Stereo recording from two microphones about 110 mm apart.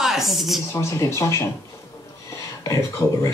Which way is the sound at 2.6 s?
25° left (ahead or behind).